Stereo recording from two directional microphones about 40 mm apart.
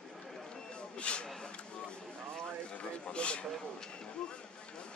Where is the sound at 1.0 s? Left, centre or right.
Left.